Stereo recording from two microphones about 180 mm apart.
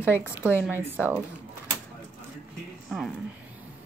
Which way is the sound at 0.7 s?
10° right (ahead or behind).